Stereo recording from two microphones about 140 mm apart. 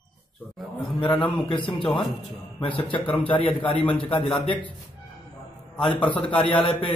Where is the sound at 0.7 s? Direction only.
35° left (ahead or behind).